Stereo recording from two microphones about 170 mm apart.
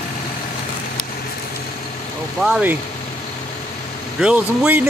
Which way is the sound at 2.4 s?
5° right (ahead or behind).